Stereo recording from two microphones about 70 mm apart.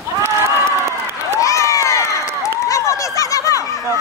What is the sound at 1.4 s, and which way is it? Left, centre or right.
Crowd, left.